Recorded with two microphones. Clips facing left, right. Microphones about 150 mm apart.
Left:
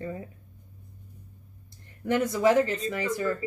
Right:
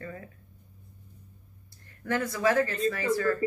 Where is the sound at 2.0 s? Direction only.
20° left (ahead or behind).